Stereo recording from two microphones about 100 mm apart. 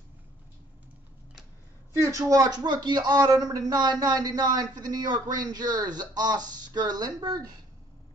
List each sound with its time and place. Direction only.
2.0 s a man's voice: 35° right (ahead or behind)